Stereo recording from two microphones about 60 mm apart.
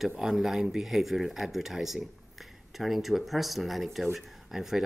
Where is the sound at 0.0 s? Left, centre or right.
Centre.